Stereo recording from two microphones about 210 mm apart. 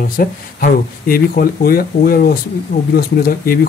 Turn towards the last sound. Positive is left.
turn(degrees=45)  # may be behind; listen again after turning